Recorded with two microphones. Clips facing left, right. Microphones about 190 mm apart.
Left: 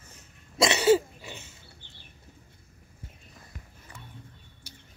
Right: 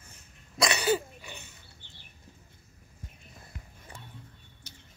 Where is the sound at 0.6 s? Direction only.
25° left (ahead or behind).